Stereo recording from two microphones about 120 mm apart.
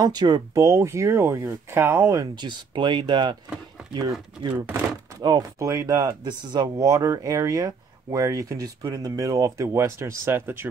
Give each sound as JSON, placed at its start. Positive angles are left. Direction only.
{"t": 0.0, "sound": "speech", "side_deg": -35}
{"t": 2.3, "sound": "speech", "side_deg": -40}
{"t": 4.6, "sound": "speech", "side_deg": -15}
{"t": 5.2, "sound": "speech", "side_deg": -30}